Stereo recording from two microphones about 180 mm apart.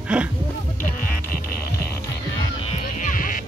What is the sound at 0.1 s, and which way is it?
Speech, 5° right (ahead or behind).